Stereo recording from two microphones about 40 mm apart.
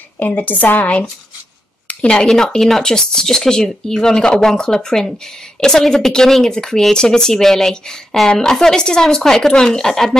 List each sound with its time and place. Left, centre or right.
0.2 s speech: left
2.0 s speech: left